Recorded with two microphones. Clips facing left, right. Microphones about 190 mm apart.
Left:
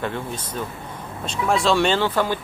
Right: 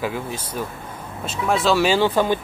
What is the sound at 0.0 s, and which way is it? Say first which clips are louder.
Speech: right 1 dB; 5° right (ahead or behind).